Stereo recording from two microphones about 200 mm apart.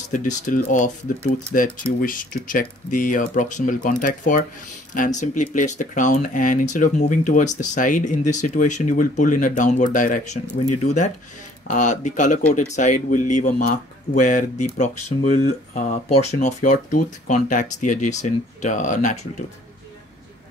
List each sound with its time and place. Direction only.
0.1 s speech: 40° left (ahead or behind)
11.6 s speech: 40° left (ahead or behind)